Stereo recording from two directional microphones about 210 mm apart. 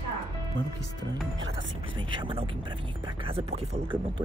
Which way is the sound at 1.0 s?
65° right (ahead or behind).